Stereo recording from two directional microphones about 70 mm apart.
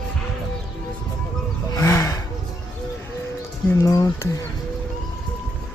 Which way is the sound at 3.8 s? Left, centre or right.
Left.